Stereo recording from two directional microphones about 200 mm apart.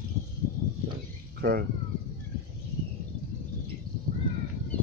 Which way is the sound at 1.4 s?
55° right (ahead or behind).